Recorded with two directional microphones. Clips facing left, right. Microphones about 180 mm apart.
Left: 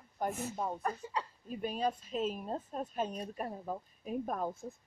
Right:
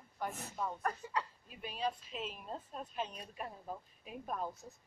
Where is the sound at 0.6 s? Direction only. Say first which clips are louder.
Left 2 dB; 25° left (ahead or behind).